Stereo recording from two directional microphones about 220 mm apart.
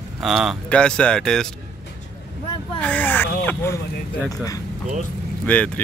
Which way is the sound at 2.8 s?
5° left (ahead or behind).